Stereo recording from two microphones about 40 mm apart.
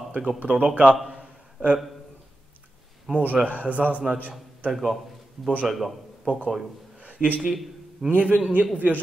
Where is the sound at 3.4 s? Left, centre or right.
Right.